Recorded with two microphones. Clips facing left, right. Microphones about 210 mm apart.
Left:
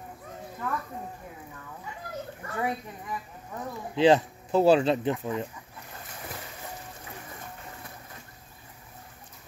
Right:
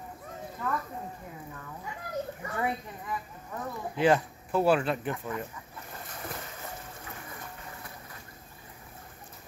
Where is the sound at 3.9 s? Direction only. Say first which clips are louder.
Left 4 dB; 25° left (ahead or behind).